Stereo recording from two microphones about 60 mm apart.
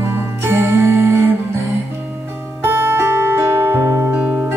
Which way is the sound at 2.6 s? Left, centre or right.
Right.